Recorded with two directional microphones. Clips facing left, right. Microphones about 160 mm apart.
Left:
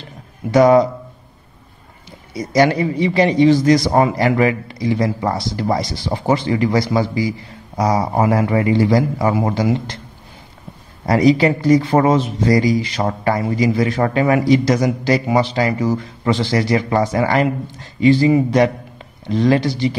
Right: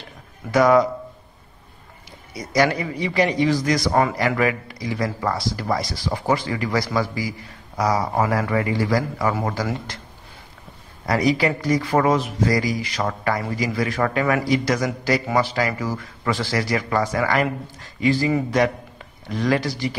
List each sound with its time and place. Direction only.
0.5 s a man's voice: 25° left (ahead or behind)
2.0 s a man's voice: 30° left (ahead or behind)
11.1 s a man's voice: 25° left (ahead or behind)